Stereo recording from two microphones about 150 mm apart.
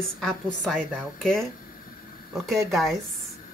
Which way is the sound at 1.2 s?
5° left (ahead or behind).